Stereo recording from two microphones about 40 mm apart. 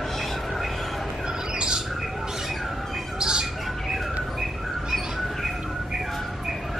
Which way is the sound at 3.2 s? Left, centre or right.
Centre.